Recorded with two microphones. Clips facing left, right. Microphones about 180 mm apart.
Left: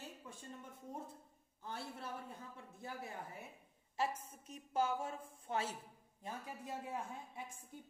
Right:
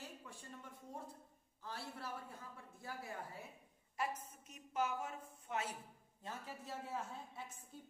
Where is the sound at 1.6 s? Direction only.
20° left (ahead or behind).